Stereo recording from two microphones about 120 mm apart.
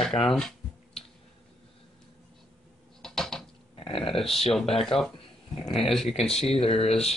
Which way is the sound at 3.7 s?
50° left (ahead or behind).